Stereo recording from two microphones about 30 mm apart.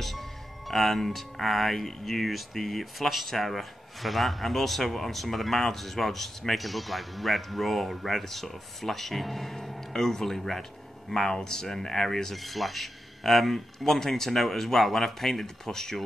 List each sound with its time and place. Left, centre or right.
0.7 s speech: centre
12.4 s speech: centre